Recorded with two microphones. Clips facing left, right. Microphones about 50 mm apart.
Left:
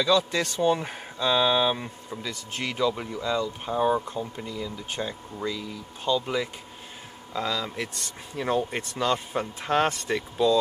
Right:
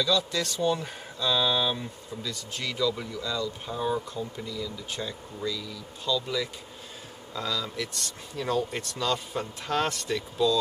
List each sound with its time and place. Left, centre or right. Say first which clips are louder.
0.0 s speech: left 4 dB; left
7.3 s speech: left 3 dB; left